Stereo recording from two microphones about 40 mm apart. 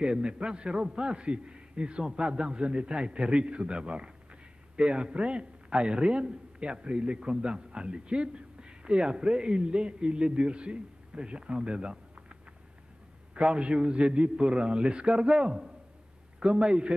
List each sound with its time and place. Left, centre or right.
0.0 s a man's voice: right
13.3 s a man's voice: right